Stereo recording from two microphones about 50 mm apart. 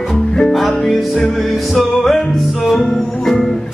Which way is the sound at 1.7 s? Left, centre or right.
Centre.